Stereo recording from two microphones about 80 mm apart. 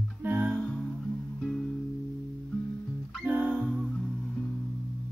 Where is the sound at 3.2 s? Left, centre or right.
Centre.